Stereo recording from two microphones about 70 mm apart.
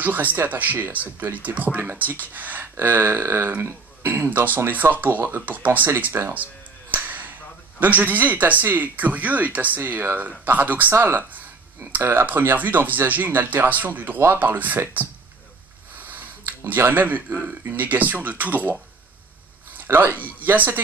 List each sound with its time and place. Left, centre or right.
0.0 s speech: right
6.9 s whip: right
7.8 s speech: right
16.0 s a sound: right
17.6 s speech: right
19.8 s speech: right